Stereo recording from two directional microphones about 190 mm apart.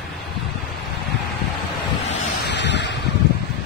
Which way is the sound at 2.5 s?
65° left (ahead or behind).